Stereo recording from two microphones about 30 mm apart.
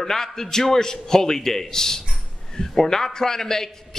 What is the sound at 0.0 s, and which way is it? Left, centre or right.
A man's voice, centre.